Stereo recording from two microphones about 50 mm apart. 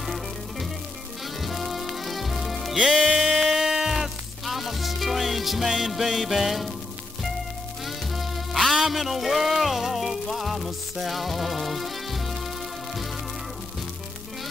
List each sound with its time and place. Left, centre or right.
0.0 s music: centre
7.8 s music: centre